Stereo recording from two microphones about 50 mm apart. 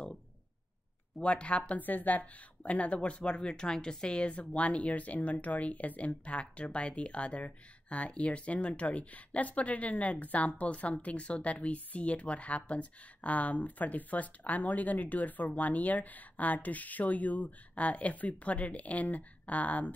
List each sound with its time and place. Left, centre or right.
1.2 s speech: left
1.7 s speech: left